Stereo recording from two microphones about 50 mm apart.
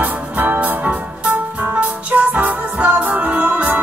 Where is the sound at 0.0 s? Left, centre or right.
Right.